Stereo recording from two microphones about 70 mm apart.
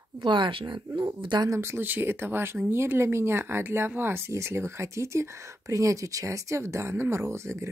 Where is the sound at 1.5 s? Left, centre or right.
Right.